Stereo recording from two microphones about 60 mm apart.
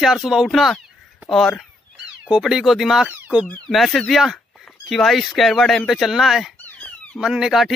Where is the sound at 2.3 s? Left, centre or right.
Centre.